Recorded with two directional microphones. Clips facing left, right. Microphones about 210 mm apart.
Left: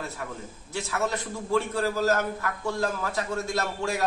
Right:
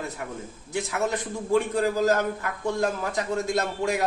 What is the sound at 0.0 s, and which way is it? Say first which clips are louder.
A man's voice: right 2 dB; 15° right (ahead or behind).